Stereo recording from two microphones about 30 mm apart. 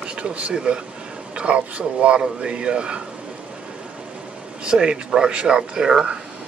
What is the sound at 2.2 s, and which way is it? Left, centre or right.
Speech, right.